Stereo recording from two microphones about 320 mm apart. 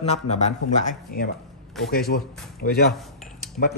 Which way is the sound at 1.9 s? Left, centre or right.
Left.